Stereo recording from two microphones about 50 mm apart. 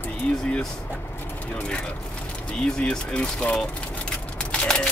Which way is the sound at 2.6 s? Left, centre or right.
Centre.